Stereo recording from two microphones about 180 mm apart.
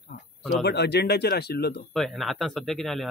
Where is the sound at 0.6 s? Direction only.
65° left (ahead or behind).